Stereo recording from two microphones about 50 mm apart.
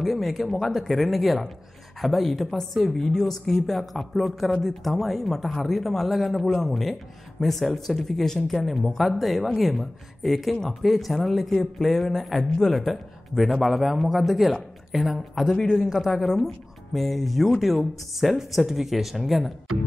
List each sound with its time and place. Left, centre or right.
0.0 s speech: centre